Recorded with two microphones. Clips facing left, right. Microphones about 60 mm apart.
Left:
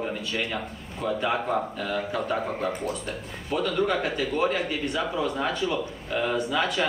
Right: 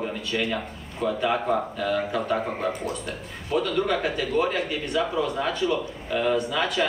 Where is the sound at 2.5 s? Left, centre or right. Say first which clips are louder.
Right 1 dB; right.